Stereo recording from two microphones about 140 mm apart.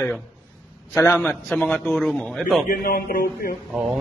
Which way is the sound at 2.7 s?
90° left.